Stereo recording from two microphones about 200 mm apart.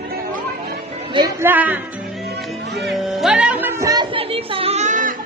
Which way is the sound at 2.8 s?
Centre (ahead or behind).